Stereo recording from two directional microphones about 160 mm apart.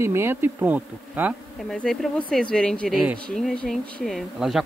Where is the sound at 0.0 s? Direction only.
15° right (ahead or behind).